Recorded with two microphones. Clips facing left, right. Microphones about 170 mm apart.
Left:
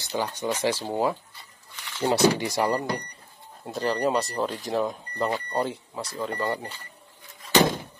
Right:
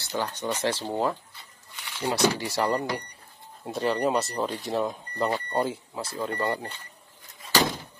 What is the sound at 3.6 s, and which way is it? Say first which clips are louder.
Speech: even; centre (ahead or behind).